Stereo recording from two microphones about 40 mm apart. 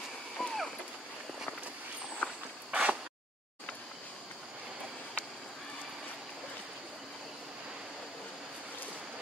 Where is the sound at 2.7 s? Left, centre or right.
Right.